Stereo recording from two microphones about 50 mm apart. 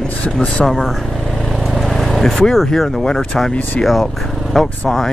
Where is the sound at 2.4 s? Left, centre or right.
Centre.